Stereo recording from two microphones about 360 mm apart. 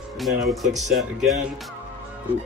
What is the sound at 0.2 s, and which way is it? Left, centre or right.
Speech, centre.